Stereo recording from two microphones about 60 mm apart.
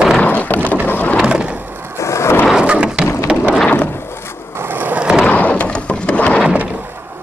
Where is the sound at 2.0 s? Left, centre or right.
Left.